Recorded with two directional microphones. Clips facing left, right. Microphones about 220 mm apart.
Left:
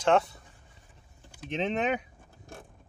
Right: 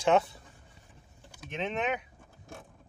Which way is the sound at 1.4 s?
30° left (ahead or behind).